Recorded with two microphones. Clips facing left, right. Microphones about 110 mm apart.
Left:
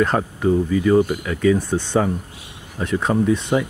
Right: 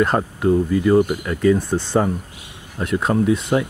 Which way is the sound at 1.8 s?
30° right (ahead or behind).